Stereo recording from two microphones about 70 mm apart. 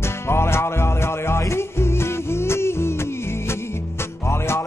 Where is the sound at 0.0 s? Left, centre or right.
Left.